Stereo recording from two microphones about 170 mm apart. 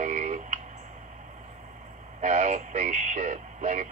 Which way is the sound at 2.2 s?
45° right (ahead or behind).